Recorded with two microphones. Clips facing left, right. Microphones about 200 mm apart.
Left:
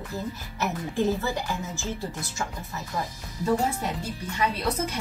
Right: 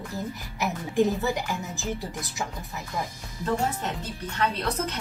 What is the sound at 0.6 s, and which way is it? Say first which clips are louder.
A woman's voice: right 2 dB; 15° right (ahead or behind).